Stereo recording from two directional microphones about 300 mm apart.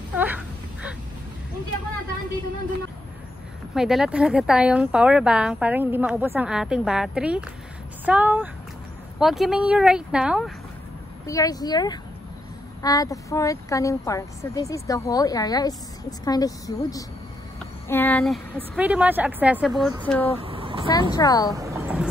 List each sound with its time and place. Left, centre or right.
0.1 s a sound: centre
3.7 s speech: centre
11.2 s a woman's voice: centre
20.3 s speech: centre
21.1 s a woman's voice: centre
21.5 s a sound: centre